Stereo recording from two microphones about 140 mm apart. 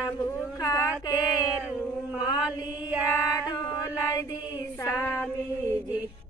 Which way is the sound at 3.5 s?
20° left (ahead or behind).